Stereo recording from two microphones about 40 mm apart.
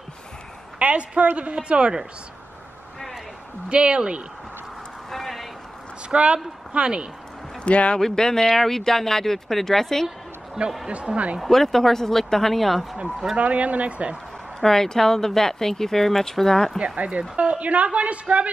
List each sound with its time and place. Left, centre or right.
0.7 s a woman's voice: right
3.6 s speech: right
5.1 s a sound: centre
6.0 s speech: right
7.6 s speech: left
8.0 s speech: centre
10.9 s a woman's voice: right
11.4 s speech: centre
12.9 s speech: right
13.4 s a woman's voice: right
14.6 s speech: centre
16.8 s a woman's voice: right